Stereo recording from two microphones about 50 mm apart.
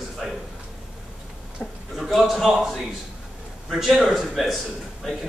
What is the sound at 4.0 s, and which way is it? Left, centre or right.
Speech, centre.